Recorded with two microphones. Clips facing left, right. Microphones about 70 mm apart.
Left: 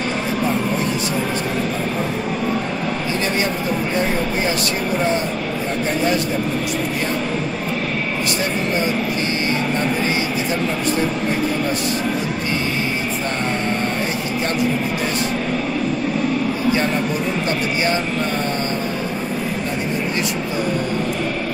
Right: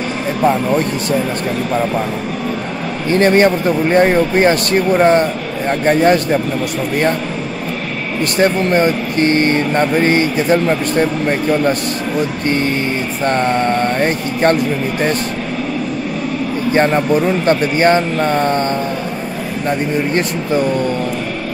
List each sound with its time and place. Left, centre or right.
3.1 s speech: right
8.4 s speech: right
13.7 s speech: right
16.7 s speech: right